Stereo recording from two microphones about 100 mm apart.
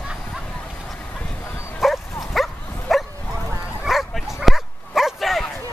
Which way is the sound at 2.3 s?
Centre (ahead or behind).